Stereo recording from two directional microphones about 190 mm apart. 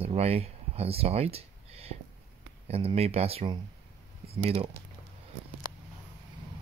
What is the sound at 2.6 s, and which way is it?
Speech, 30° right (ahead or behind).